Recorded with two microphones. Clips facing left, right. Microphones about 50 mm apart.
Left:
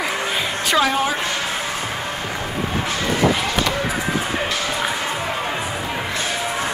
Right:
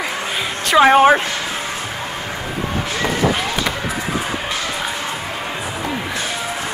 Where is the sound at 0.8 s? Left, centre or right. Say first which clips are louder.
Right 9 dB; right.